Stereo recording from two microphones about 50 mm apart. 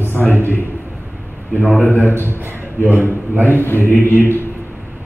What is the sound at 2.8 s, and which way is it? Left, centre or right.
Speech, right.